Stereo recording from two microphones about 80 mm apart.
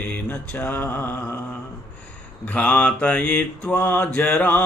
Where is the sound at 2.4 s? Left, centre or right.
Centre.